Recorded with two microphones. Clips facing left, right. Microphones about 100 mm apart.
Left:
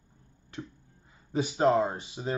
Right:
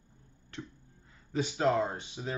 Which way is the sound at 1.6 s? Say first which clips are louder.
Left 4 dB; 35° left (ahead or behind).